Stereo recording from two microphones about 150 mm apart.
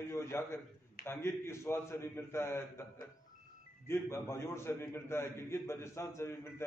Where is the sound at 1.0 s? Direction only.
15° left (ahead or behind).